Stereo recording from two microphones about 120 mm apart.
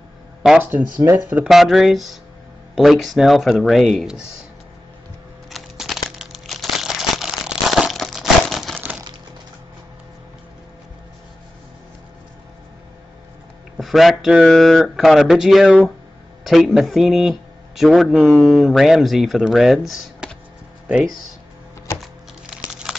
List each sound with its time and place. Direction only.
0.4 s speech: 10° right (ahead or behind)
1.5 s speech: centre (ahead or behind)
5.5 s crumpling: centre (ahead or behind)
13.7 s a man's voice: centre (ahead or behind)
18.1 s speech: 20° right (ahead or behind)
18.5 s speech: centre (ahead or behind)
22.7 s a sound: 5° right (ahead or behind)